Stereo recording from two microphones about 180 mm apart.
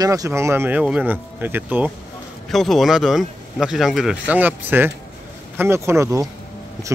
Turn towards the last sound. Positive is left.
turn(degrees=-15)  # may be behind; listen again after turning